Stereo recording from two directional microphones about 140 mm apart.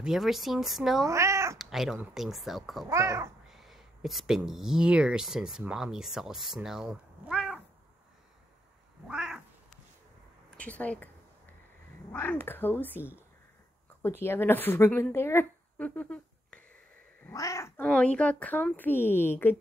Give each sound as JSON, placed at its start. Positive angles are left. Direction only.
{"t": 0.0, "sound": "speech", "side_deg": 0}
{"t": 1.0, "sound": "speech", "side_deg": -20}
{"t": 1.6, "sound": "a sound", "side_deg": 0}
{"t": 2.1, "sound": "speech", "side_deg": 0}
{"t": 2.9, "sound": "a child's voice", "side_deg": -20}
{"t": 3.4, "sound": "speech", "side_deg": 0}
{"t": 9.0, "sound": "cat", "side_deg": -5}
{"t": 10.5, "sound": "speech", "side_deg": 10}
{"t": 12.1, "sound": "speech", "side_deg": 15}
{"t": 17.3, "sound": "speech", "side_deg": 25}
{"t": 17.8, "sound": "speech", "side_deg": 5}